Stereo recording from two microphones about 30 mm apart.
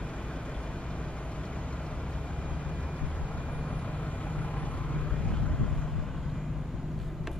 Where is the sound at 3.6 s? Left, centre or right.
Left.